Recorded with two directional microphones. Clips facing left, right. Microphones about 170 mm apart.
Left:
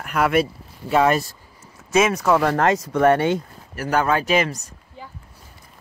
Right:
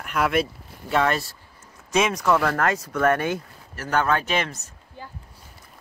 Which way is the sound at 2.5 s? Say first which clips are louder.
Left 5 dB; 25° left (ahead or behind).